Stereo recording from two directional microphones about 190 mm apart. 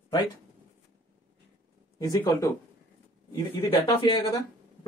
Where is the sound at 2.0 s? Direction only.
20° left (ahead or behind).